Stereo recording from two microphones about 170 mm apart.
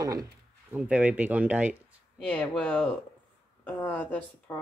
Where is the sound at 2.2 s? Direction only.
5° left (ahead or behind).